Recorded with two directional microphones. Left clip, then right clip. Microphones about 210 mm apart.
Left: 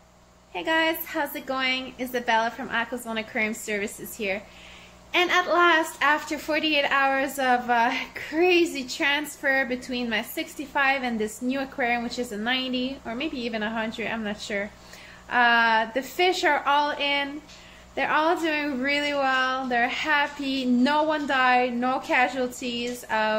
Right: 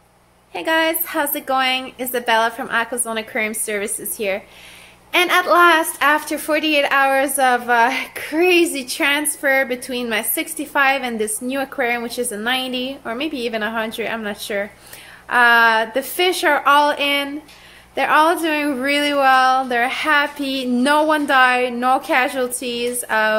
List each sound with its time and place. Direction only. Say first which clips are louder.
0.5 s a woman's voice: right 6 dB; 20° right (ahead or behind)